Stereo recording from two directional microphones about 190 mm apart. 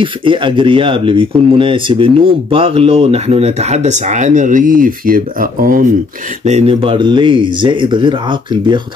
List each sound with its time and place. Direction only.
0.0 s speech: 25° right (ahead or behind); by 5.9 s 45° right (ahead or behind)
6.4 s speech: 35° right (ahead or behind)